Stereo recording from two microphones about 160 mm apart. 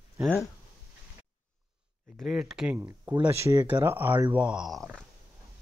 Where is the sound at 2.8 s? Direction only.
20° right (ahead or behind); by 5.0 s centre (ahead or behind).